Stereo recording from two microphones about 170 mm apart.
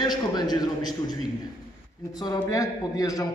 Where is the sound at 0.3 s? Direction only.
25° left (ahead or behind).